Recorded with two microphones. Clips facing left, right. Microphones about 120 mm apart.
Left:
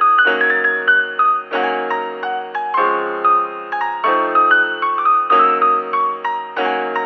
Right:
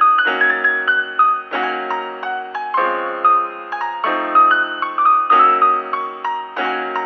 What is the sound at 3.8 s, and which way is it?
Music, 15° left (ahead or behind).